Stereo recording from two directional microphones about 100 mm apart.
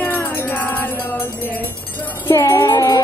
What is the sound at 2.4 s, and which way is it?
Music, 35° left (ahead or behind).